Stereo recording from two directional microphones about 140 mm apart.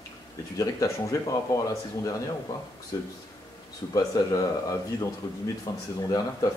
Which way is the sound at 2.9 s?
25° left (ahead or behind).